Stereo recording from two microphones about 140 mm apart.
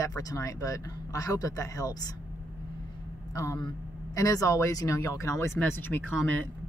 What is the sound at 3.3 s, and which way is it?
Speech, 25° left (ahead or behind).